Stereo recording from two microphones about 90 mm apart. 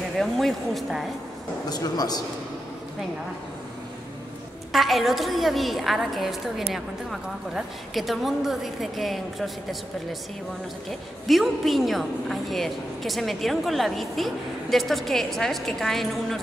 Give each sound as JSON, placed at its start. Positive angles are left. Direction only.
{"t": 0.2, "sound": "a woman's voice", "side_deg": 0}
{"t": 1.7, "sound": "a man's voice", "side_deg": 45}
{"t": 4.7, "sound": "a woman's voice", "side_deg": 0}
{"t": 10.9, "sound": "a woman's voice", "side_deg": 0}